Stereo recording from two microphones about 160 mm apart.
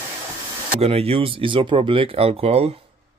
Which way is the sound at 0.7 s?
40° right (ahead or behind).